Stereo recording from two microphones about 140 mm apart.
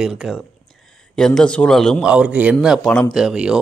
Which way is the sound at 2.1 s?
10° right (ahead or behind).